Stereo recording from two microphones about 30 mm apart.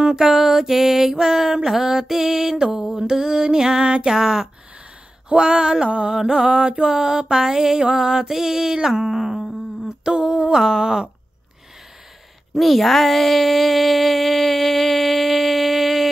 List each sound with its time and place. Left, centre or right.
0.0 s music: centre
2.7 s mantra: centre; by 5.9 s right
5.9 s music: right
6.1 s mantra: right
8.3 s music: centre
9.8 s humming: right
10.6 s mantra: right
12.5 s a sound: centre